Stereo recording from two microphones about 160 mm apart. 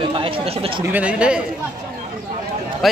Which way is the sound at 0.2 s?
35° right (ahead or behind).